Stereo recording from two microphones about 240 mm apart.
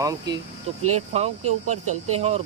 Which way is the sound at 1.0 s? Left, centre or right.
Right.